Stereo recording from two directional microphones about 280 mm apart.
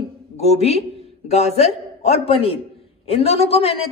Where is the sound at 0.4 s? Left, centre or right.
Left.